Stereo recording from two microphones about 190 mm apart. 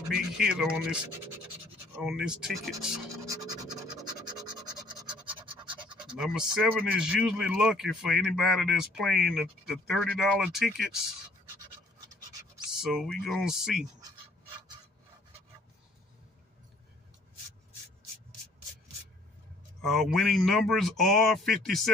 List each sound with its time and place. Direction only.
0.1 s speech: 5° right (ahead or behind)
4.1 s scratch: 25° right (ahead or behind)
6.1 s speech: centre (ahead or behind)
12.6 s speech: centre (ahead or behind)
19.8 s speech: centre (ahead or behind)